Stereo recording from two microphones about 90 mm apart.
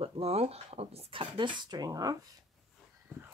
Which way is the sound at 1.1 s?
70° right (ahead or behind).